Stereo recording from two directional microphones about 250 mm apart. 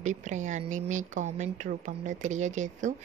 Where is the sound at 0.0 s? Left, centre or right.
Right.